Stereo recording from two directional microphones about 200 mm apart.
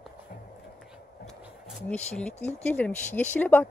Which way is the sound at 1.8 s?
5° left (ahead or behind).